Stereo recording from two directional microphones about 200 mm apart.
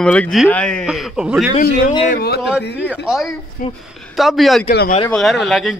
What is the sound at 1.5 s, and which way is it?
Speech, 35° left (ahead or behind).